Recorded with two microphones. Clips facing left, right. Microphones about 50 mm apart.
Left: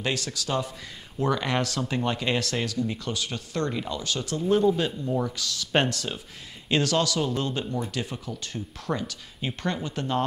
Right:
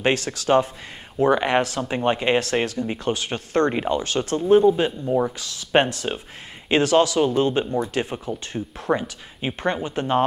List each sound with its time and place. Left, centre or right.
0.0 s speech: right